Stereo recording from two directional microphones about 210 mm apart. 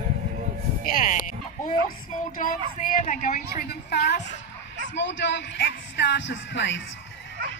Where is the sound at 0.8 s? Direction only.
45° left (ahead or behind).